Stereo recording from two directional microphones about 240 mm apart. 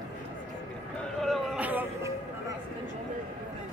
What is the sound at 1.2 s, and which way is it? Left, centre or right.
Music, centre.